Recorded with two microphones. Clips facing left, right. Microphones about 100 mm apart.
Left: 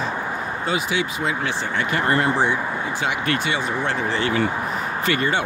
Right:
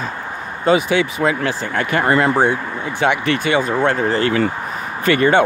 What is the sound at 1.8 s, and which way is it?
Speech, 75° right (ahead or behind).